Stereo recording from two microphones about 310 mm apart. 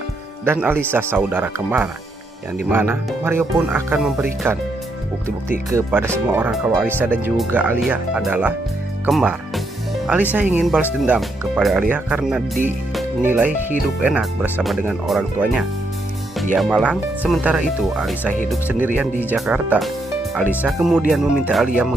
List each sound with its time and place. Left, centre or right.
0.5 s speech: centre
5.7 s speech: centre
10.3 s speech: centre